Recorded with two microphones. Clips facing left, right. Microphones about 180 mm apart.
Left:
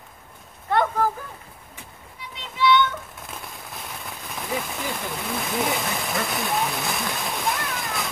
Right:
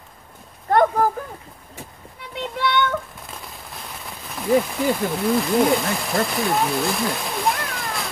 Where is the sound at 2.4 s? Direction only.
50° right (ahead or behind).